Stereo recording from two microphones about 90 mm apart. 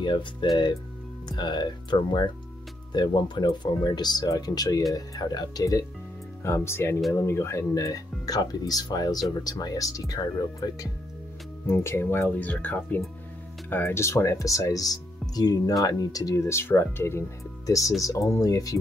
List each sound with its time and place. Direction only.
0.0 s speech: 65° left (ahead or behind); by 5.9 s 40° left (ahead or behind)
6.4 s speech: 30° left (ahead or behind)
11.6 s speech: 25° left (ahead or behind)
17.6 s speech: 35° left (ahead or behind)